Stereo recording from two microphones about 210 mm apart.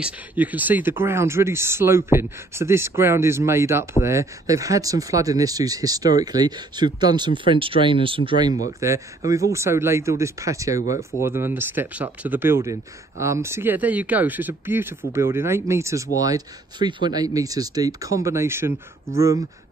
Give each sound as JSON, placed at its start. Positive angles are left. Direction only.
{"t": 0.0, "sound": "speech", "side_deg": -10}